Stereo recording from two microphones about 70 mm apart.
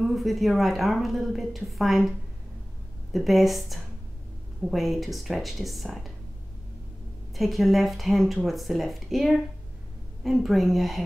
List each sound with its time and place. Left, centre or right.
0.0 s a woman's voice: centre
7.3 s a woman's voice: centre